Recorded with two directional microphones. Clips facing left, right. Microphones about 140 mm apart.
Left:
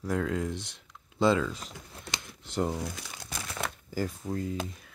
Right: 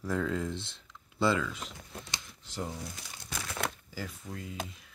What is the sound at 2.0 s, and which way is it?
Crumpling, 60° left (ahead or behind).